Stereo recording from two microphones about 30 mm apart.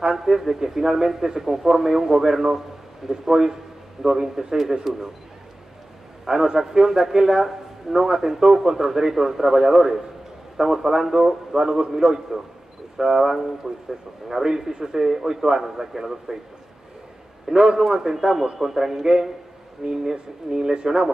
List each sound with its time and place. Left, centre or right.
0.1 s a man's voice: centre
6.2 s a man's voice: right
12.0 s a man's voice: centre
12.9 s a man's voice: centre
17.5 s a man's voice: centre
20.7 s speech: right